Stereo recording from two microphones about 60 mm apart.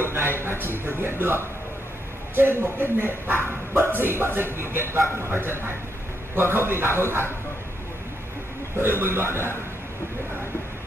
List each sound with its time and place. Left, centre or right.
0.0 s speech: right
8.7 s speech: right